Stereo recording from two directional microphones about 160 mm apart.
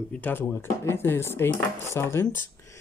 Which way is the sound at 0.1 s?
10° left (ahead or behind).